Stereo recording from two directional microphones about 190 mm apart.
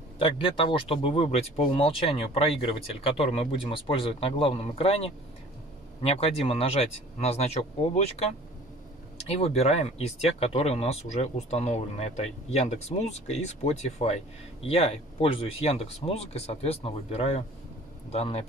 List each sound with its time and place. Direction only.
0.2 s speech: 25° left (ahead or behind)